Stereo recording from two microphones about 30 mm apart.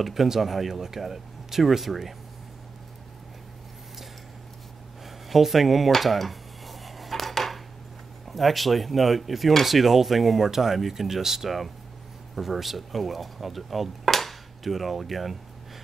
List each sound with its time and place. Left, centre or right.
0.0 s speech: centre
5.0 s a sound: centre
5.9 s dishes: centre
8.3 s speech: centre